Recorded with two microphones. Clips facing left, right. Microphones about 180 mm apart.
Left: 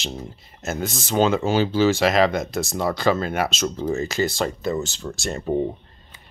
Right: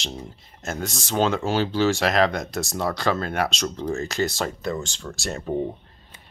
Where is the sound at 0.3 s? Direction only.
5° left (ahead or behind).